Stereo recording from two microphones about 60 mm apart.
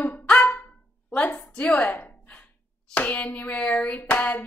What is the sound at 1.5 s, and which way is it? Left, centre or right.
Gasp, left.